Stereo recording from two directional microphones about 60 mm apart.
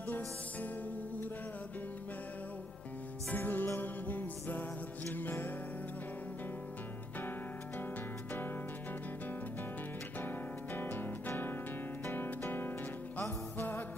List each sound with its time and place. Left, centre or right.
3.3 s music: left
10.2 s music: left